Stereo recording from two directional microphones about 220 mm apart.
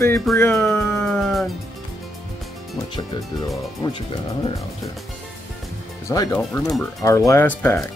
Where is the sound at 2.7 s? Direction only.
20° left (ahead or behind).